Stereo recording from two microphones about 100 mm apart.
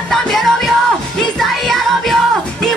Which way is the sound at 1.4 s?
Centre (ahead or behind).